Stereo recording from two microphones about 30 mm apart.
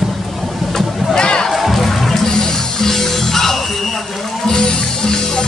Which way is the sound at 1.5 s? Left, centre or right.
Centre.